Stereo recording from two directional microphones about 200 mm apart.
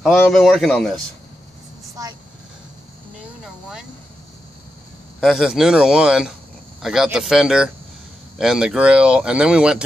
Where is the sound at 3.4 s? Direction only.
5° right (ahead or behind).